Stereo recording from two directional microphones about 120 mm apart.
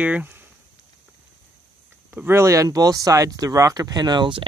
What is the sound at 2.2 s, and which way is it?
Speech, 20° right (ahead or behind).